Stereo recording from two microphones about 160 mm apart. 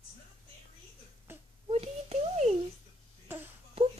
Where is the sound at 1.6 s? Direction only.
40° right (ahead or behind).